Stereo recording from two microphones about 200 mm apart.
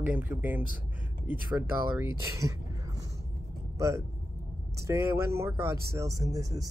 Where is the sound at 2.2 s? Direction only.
15° right (ahead or behind).